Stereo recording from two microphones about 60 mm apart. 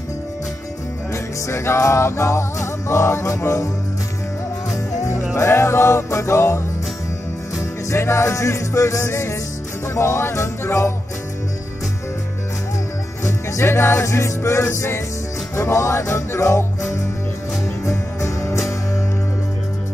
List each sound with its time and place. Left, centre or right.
1.1 s music: left
5.3 s music: left
13.5 s music: left
17.8 s music: left